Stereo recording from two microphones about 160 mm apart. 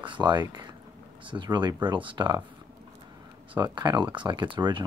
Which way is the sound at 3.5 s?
30° right (ahead or behind).